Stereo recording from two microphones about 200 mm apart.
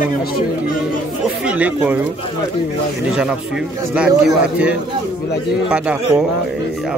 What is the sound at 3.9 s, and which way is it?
A man's voice, 5° right (ahead or behind).